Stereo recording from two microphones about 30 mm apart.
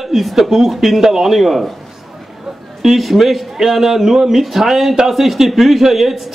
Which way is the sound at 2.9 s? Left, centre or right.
Centre.